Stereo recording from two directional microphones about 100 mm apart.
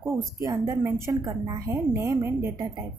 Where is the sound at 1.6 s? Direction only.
30° right (ahead or behind).